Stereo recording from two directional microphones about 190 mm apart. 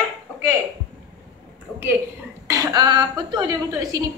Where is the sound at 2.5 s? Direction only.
20° right (ahead or behind).